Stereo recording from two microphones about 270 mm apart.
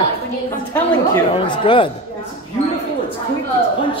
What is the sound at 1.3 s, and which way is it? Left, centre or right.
Speech, centre.